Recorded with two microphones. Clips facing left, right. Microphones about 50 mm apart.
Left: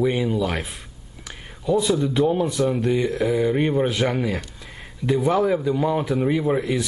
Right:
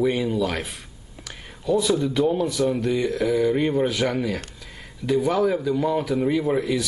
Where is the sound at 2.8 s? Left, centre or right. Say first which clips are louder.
Left 1 dB; left.